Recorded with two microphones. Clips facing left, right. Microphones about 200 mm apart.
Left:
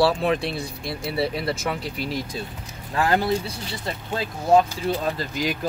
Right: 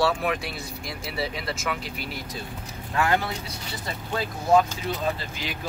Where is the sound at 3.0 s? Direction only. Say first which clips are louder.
Left 2 dB; 35° left (ahead or behind).